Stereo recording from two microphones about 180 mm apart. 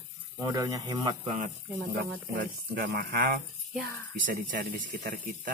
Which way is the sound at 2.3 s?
55° right (ahead or behind).